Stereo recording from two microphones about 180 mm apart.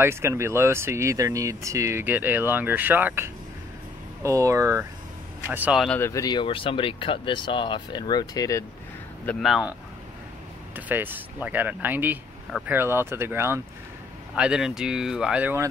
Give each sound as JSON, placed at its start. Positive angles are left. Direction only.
{"t": 0.0, "sound": "speech", "side_deg": -15}
{"t": 5.9, "sound": "speech", "side_deg": 15}
{"t": 9.2, "sound": "speech", "side_deg": 5}
{"t": 10.9, "sound": "speech", "side_deg": -10}